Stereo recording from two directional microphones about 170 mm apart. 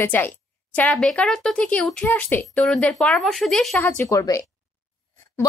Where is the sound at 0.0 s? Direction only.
10° left (ahead or behind).